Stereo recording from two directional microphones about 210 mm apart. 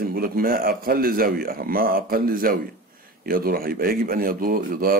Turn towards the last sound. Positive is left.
turn(degrees=-45)  # may be behind; listen again after turning